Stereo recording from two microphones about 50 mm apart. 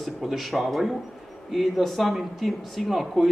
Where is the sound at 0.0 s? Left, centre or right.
Centre.